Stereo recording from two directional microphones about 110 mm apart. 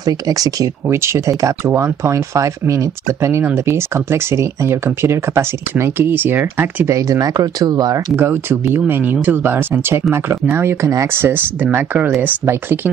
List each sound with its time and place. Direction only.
0.0 s speech: 35° right (ahead or behind)
8.2 s speech: 20° right (ahead or behind)